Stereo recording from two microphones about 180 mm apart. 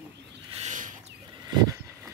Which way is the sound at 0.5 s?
40° right (ahead or behind).